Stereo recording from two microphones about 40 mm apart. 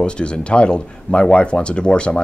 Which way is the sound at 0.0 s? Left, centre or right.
Left.